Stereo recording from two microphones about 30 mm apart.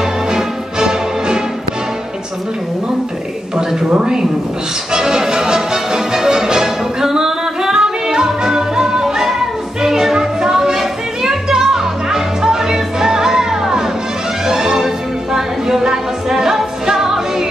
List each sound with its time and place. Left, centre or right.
0.3 s music: right
3.5 s speech: right
4.9 s music: centre